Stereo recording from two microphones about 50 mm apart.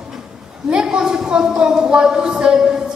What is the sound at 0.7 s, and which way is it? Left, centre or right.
A woman's voice, centre.